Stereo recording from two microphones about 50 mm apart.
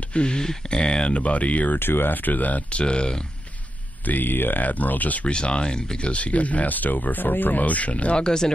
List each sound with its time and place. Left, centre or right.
0.1 s speech: centre
1.8 s speech: left
2.8 s speech: centre
4.0 s speech: left
5.3 s speech: centre